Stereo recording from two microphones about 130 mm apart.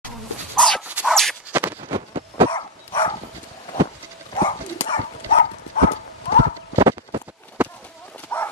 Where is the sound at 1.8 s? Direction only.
35° right (ahead or behind).